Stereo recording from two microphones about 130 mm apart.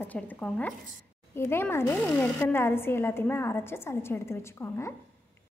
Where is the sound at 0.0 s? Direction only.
10° left (ahead or behind).